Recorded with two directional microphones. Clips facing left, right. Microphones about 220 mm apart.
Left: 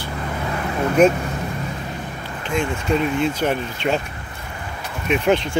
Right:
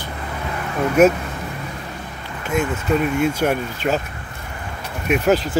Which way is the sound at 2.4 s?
5° right (ahead or behind).